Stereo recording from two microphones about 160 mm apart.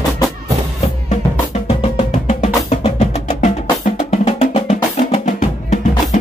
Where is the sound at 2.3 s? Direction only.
40° left (ahead or behind).